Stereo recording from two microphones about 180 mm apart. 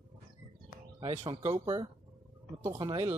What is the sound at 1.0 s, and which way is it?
Speech, 25° right (ahead or behind).